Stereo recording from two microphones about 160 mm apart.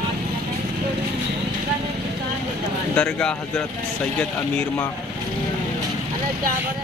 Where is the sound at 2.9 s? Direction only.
5° left (ahead or behind).